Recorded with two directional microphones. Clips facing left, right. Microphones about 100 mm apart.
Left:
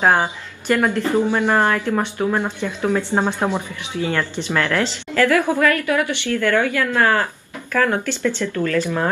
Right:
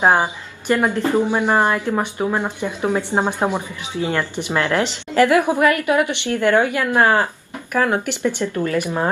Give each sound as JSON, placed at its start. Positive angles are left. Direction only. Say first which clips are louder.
{"t": 0.0, "sound": "a woman's voice", "louder": "right 1 dB", "side_deg": -15}